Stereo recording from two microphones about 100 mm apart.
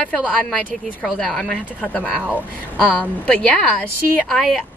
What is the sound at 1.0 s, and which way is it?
Speech, 5° left (ahead or behind).